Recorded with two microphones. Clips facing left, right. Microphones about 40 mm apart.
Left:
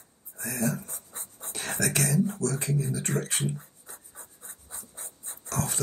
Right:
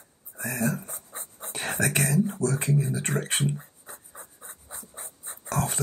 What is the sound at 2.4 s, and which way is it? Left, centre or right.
Speech, right.